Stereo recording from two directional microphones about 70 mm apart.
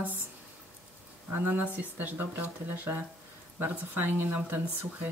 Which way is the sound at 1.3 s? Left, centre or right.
Right.